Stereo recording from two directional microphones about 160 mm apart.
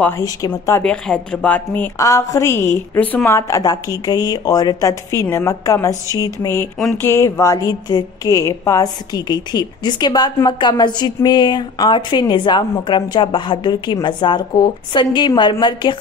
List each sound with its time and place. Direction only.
0.2 s a woman's voice: 20° left (ahead or behind)
0.8 s a woman's voice: 5° left (ahead or behind); by 16.0 s 30° left (ahead or behind)